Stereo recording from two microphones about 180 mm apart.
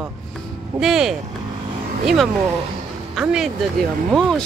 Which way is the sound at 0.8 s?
Centre (ahead or behind).